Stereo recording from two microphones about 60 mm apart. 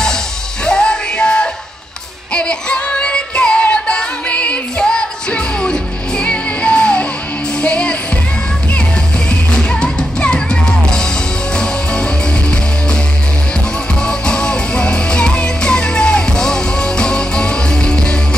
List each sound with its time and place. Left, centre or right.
0.7 s music: centre
9.6 s music: centre
14.0 s music: centre